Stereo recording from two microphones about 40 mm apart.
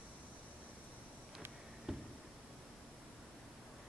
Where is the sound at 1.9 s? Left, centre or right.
Centre.